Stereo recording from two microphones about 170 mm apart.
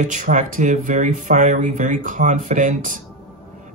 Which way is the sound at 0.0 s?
45° right (ahead or behind).